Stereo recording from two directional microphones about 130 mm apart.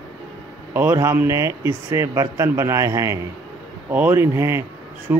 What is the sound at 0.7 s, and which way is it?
Speech, 20° right (ahead or behind).